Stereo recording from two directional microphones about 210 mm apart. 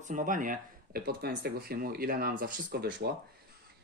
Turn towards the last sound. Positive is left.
turn(degrees=-50)  # may be behind; listen again after turning